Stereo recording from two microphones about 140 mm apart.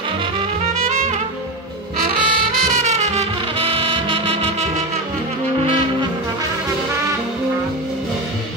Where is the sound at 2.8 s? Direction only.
55° right (ahead or behind).